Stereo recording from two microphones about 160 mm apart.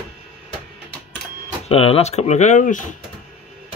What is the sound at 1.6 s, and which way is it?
Speech, 35° left (ahead or behind).